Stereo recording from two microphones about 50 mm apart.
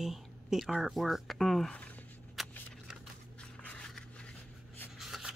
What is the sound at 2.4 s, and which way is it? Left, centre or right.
Shuffling cards, centre.